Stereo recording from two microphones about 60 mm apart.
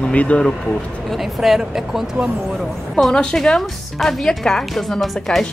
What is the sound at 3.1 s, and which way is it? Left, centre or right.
A woman's voice, centre.